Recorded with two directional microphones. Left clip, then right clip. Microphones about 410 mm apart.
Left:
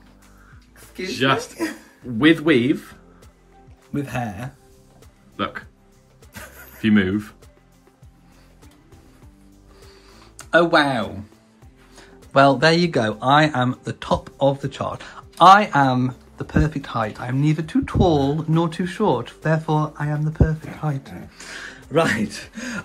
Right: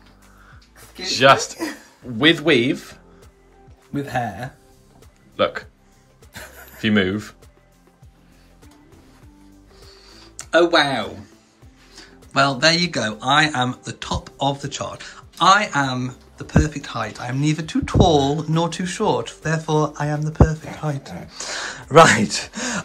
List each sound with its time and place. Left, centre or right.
1.0 s speech: centre
6.3 s a sound: centre
9.8 s music: centre
11.9 s speech: centre